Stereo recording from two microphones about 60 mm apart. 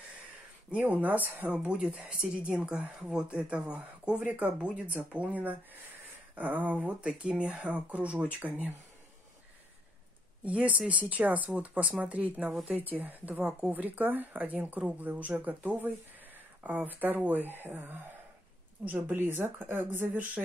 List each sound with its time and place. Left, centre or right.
0.7 s speech: right
1.6 s speech: centre
10.4 s speech: right